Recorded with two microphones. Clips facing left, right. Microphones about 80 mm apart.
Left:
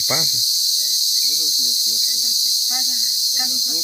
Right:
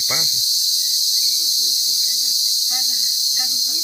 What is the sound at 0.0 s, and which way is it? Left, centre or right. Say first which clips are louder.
Cricket: left 3 dB; centre.